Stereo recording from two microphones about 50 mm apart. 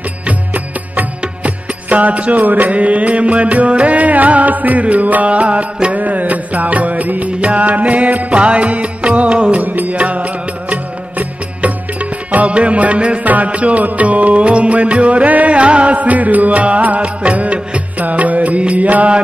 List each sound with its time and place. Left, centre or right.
1.2 s music: right